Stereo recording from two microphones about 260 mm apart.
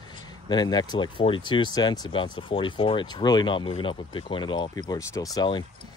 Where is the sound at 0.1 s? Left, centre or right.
Centre.